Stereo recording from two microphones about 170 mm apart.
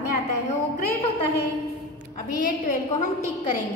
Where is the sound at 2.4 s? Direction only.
50° left (ahead or behind).